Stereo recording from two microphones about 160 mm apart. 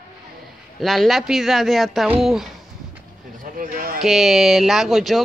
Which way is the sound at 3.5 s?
60° right (ahead or behind).